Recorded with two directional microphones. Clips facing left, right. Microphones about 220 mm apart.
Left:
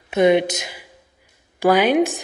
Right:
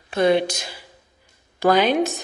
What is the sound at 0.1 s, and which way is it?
Speech, 15° left (ahead or behind).